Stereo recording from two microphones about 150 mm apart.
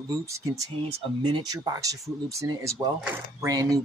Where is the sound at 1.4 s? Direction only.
25° right (ahead or behind).